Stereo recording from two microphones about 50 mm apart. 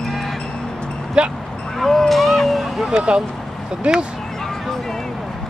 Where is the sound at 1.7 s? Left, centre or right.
Centre.